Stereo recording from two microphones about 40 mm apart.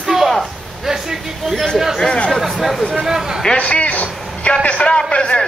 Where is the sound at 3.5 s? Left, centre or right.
Left.